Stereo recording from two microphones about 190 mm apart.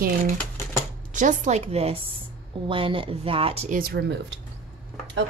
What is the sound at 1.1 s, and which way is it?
Speech, 40° right (ahead or behind).